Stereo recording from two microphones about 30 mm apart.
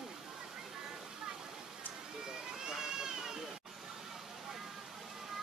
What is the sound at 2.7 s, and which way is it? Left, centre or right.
Speech, right.